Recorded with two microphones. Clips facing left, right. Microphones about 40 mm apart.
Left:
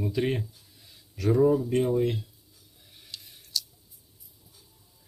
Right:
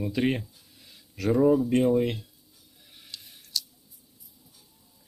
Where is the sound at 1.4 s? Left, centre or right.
Centre.